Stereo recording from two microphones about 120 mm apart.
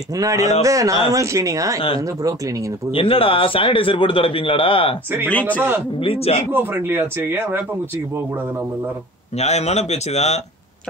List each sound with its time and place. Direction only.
0.1 s a man's voice: 30° right (ahead or behind)
2.9 s speech: 50° left (ahead or behind)
5.3 s a man's voice: 10° left (ahead or behind)
5.9 s speech: 55° left (ahead or behind)
6.5 s speech: 15° right (ahead or behind)
9.4 s speech: 65° left (ahead or behind)